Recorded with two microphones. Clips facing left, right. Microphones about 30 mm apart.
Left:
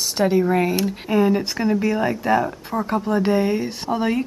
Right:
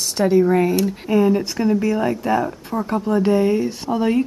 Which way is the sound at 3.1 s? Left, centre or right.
Left.